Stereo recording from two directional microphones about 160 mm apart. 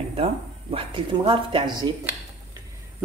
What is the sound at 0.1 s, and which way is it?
Speech, 35° right (ahead or behind).